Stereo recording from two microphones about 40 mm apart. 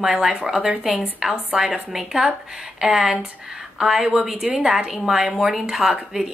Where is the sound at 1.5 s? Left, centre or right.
Centre.